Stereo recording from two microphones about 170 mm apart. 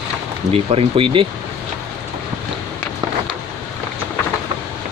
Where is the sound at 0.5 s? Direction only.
35° right (ahead or behind).